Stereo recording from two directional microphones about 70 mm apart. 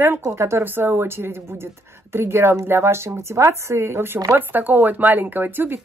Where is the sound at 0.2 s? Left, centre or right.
Right.